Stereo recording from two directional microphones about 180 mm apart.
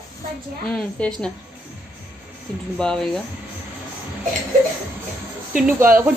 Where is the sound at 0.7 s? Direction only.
5° left (ahead or behind).